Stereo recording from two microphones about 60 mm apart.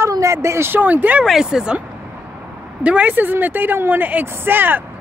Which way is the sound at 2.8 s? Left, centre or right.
Right.